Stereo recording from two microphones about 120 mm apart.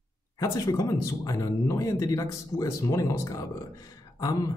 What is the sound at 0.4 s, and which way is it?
Speech, 30° left (ahead or behind).